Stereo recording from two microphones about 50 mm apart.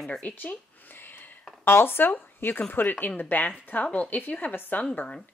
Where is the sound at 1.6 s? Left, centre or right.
Left.